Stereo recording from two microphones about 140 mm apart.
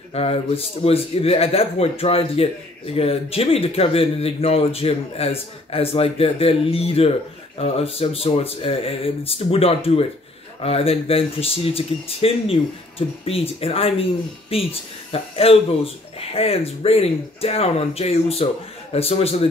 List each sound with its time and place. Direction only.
0.1 s speech: 45° left (ahead or behind)